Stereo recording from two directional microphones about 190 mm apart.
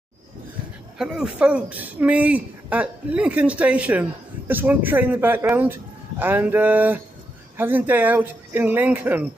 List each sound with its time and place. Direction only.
0.9 s a man's voice: 5° right (ahead or behind)